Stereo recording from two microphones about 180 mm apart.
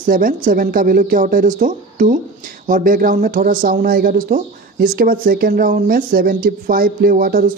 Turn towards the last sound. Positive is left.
turn(degrees=-50)  # may be behind; listen again after turning